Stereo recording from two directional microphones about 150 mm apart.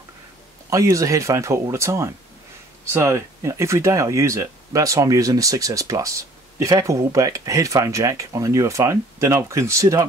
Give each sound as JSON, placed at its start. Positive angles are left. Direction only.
{"t": 0.7, "sound": "speech", "side_deg": -20}